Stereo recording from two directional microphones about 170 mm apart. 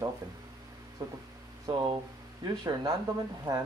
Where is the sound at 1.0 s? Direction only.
20° right (ahead or behind).